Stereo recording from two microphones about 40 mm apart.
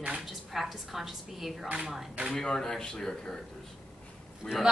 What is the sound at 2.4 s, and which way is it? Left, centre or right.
Speech, centre.